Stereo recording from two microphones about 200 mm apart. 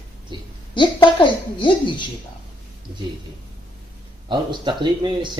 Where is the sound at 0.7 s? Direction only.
25° left (ahead or behind).